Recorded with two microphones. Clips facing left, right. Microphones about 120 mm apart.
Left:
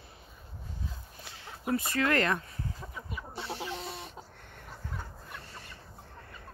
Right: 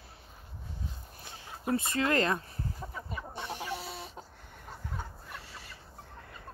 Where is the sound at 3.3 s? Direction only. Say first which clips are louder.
Left 2 dB; 15° right (ahead or behind).